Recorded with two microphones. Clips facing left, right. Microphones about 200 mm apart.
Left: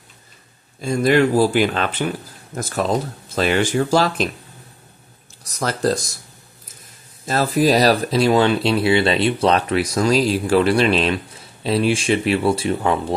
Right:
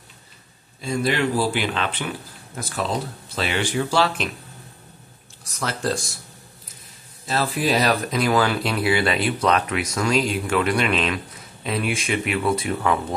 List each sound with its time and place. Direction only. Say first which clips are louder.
0.7 s speech: left 7 dB; 45° left (ahead or behind)
5.4 s speech: left 6 dB; 40° left (ahead or behind)
7.2 s speech: left 6 dB; 45° left (ahead or behind)